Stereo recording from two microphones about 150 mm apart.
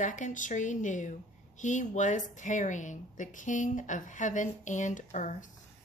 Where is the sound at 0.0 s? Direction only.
55° left (ahead or behind).